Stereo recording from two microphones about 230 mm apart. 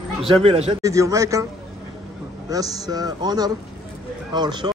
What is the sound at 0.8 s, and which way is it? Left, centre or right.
Speech, centre.